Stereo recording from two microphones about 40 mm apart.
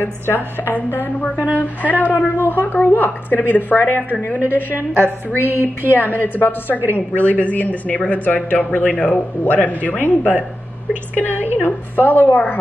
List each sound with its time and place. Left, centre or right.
0.0 s a woman's voice: left
1.3 s a woman's voice: right
1.6 s a woman's voice: left
4.5 s a woman's voice: left
5.9 s a woman's voice: left
6.8 s a woman's voice: right
7.2 s a woman's voice: left
11.3 s a woman's voice: right
11.6 s a woman's voice: left